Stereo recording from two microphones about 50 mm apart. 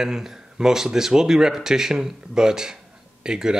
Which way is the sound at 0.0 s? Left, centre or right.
Centre.